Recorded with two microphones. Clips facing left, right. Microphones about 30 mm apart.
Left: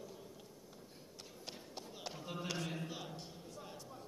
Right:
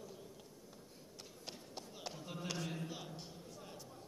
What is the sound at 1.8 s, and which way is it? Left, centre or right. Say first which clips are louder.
Run: left 1 dB; centre.